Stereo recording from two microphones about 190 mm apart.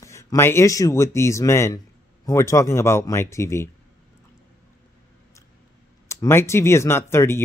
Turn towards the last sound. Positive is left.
turn(degrees=15)  # may be behind; listen again after turning